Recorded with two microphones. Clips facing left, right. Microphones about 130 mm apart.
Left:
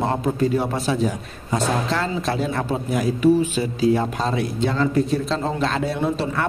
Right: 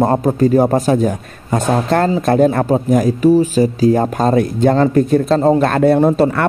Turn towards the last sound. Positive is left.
turn(degrees=-60)  # may be behind; listen again after turning